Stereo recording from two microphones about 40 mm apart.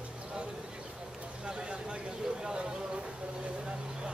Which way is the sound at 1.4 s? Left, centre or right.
Right.